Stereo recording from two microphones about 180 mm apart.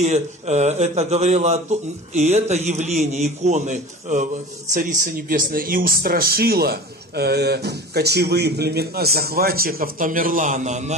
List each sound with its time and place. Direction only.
0.0 s a man's voice: 40° right (ahead or behind)